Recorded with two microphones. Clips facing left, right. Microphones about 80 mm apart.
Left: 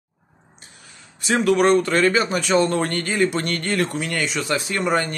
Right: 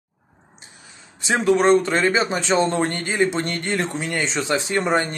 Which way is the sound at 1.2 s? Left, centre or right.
Right.